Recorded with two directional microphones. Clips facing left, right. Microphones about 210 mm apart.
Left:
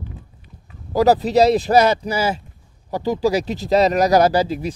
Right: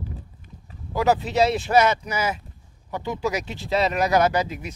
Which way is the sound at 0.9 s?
35° left (ahead or behind).